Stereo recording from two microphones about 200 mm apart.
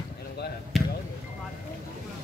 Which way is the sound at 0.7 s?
Centre (ahead or behind).